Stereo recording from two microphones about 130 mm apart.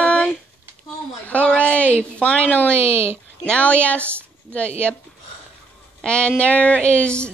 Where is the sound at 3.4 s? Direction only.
10° left (ahead or behind).